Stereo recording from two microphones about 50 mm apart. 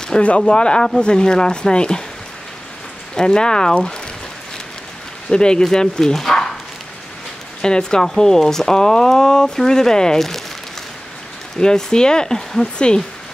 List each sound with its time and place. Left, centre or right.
0.1 s speech: centre
3.2 s speech: centre
5.3 s speech: centre
7.6 s speech: centre
11.6 s speech: centre